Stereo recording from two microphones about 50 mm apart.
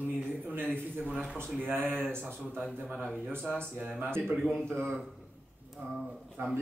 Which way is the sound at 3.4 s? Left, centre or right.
Centre.